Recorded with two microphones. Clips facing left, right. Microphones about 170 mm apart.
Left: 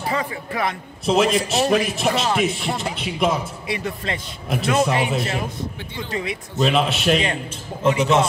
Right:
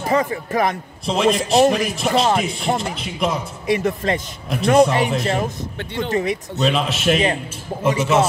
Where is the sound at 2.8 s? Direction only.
Centre (ahead or behind).